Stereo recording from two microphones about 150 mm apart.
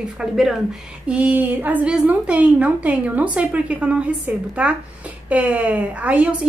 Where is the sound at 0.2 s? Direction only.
5° right (ahead or behind).